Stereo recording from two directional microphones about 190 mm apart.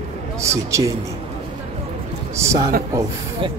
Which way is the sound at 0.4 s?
15° right (ahead or behind).